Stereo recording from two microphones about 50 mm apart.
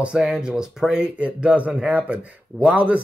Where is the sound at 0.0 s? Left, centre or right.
Right.